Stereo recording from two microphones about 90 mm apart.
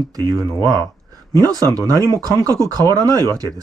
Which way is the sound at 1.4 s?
40° right (ahead or behind).